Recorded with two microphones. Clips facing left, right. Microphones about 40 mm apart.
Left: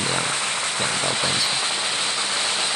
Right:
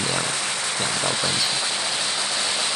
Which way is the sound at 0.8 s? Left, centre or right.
Left.